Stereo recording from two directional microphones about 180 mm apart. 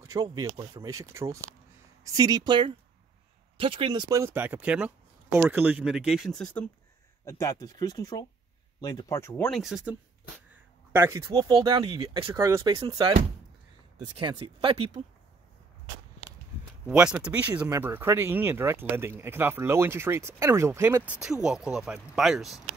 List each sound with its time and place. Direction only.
0.0 s speech: 20° right (ahead or behind); by 6.6 s 5° left (ahead or behind)
7.2 s speech: 15° left (ahead or behind)
9.3 s speech: 5° left (ahead or behind)
10.9 s speech: 15° right (ahead or behind); by 12.4 s 30° right (ahead or behind)
12.4 s speech: 20° right (ahead or behind)
14.2 s speech: 30° right (ahead or behind)
16.8 s speech: 5° right (ahead or behind)